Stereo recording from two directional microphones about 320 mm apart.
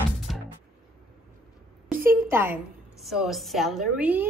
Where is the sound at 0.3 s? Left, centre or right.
Centre.